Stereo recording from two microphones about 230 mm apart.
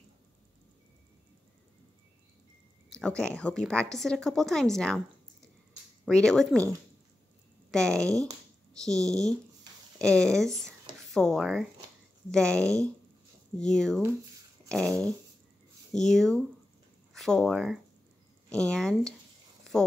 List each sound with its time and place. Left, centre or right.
2.9 s a woman's voice: centre
6.0 s a woman's voice: centre
7.7 s a woman's voice: centre
19.7 s a sound: centre